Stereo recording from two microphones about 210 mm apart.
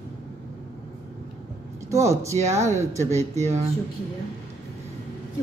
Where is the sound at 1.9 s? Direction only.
15° right (ahead or behind).